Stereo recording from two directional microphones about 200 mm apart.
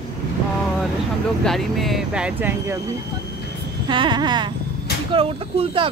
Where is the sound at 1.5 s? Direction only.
Centre (ahead or behind).